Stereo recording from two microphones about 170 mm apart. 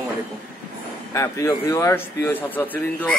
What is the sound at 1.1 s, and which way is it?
Speech, 15° left (ahead or behind).